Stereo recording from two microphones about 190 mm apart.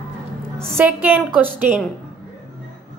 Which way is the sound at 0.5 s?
10° right (ahead or behind).